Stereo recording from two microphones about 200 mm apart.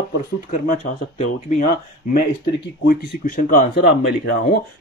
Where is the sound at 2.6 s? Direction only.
55° left (ahead or behind).